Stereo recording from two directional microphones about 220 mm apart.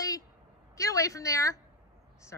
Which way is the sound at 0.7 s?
15° left (ahead or behind).